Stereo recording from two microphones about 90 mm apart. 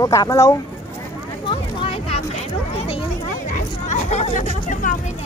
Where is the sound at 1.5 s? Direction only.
80° left.